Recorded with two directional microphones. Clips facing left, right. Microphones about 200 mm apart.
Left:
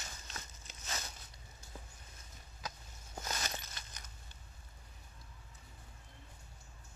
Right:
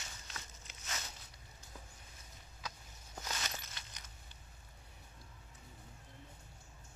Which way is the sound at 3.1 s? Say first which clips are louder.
Left 2 dB; 45° left (ahead or behind).